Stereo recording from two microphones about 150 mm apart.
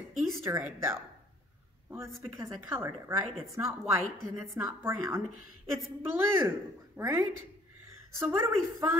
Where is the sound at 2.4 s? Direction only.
20° right (ahead or behind).